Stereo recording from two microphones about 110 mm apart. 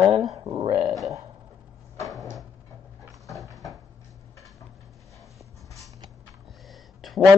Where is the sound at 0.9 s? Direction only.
Centre (ahead or behind).